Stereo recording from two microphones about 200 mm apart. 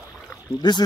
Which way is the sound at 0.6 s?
20° left (ahead or behind).